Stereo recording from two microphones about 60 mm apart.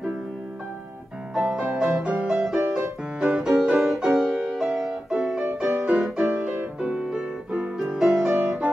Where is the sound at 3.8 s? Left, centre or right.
Centre.